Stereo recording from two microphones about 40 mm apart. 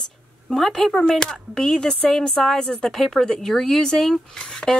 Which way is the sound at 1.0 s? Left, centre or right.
Centre.